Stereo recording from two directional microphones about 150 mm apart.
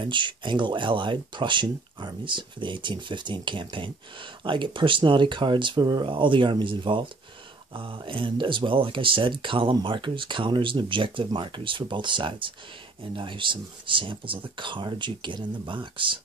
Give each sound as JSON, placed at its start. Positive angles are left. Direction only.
{"t": 0.0, "sound": "speech", "side_deg": -30}